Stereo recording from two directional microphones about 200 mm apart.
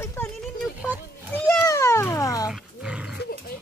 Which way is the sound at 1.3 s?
10° left (ahead or behind).